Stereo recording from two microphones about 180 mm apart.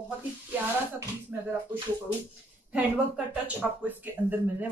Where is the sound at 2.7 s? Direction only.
5° right (ahead or behind).